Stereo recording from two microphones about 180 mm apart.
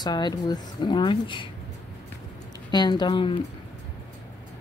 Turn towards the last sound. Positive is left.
turn(degrees=30)  # may be behind; listen again after turning